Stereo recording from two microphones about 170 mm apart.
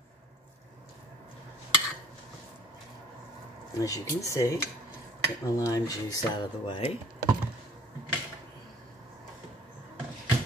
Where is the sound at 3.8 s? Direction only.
20° left (ahead or behind).